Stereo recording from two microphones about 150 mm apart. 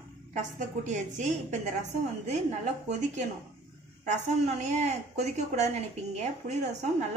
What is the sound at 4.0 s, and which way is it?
A woman's voice, 50° right (ahead or behind).